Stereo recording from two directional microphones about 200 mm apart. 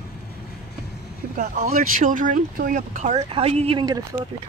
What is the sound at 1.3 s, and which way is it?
Speech, 40° right (ahead or behind).